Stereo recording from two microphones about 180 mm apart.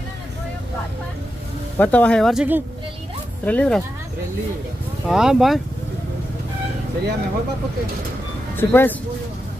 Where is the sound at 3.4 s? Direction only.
5° left (ahead or behind).